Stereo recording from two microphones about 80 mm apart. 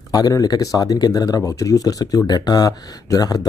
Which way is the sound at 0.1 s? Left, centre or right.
Left.